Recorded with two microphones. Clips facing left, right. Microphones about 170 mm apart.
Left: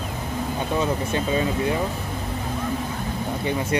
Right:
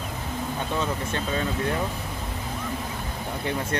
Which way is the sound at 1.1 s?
10° left (ahead or behind).